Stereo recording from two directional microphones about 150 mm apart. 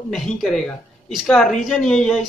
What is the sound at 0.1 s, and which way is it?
Speech, centre (ahead or behind).